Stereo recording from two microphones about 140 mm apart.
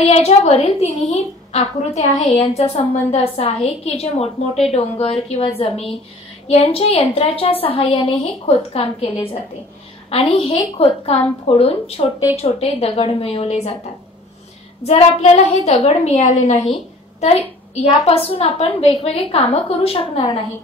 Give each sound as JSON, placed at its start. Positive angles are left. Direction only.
{"t": 0.0, "sound": "a woman's voice", "side_deg": 50}
{"t": 14.9, "sound": "a woman's voice", "side_deg": 50}